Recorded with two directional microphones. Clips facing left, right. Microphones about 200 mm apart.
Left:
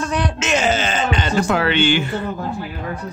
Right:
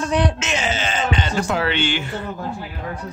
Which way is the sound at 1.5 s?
60° left (ahead or behind).